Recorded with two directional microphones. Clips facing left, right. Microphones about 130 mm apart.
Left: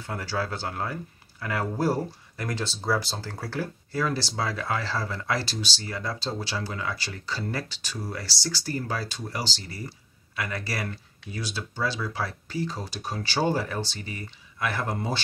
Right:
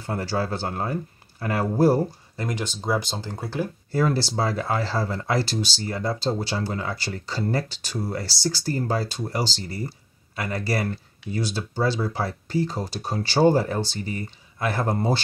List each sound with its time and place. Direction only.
0.0 s speech: 35° right (ahead or behind)
4.0 s speech: 35° right (ahead or behind)